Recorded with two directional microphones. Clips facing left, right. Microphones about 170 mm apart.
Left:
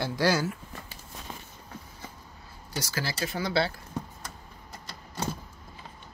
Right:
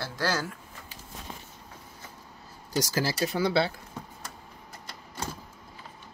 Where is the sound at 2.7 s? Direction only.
45° right (ahead or behind).